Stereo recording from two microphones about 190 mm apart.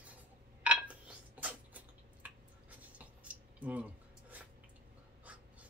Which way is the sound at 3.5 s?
10° right (ahead or behind).